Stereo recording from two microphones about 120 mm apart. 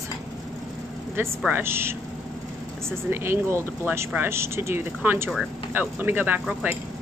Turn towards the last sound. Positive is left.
turn(degrees=-15)  # may be behind; listen again after turning